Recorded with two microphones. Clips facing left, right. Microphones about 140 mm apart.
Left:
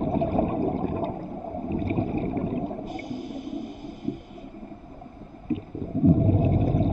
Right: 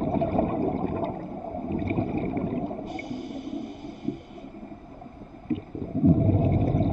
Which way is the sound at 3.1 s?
25° right (ahead or behind).